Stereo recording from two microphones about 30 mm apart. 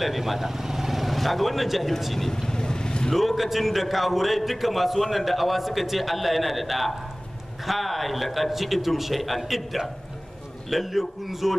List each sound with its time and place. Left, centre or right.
0.0 s speech: centre
2.2 s vehicle: centre
3.2 s a man's voice: centre